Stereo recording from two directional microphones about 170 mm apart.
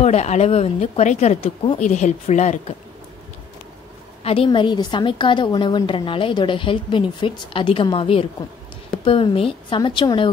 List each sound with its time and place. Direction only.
0.0 s speech: 40° left (ahead or behind)
4.2 s a woman's voice: 35° left (ahead or behind)